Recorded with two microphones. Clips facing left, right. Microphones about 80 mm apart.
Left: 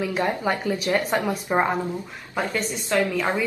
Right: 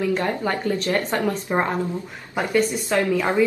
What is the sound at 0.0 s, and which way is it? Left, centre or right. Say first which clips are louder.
A woman's voice: right 1 dB; centre.